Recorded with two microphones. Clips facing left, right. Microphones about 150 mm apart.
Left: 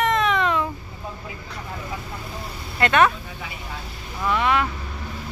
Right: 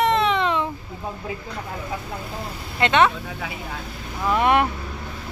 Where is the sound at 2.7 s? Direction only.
20° right (ahead or behind).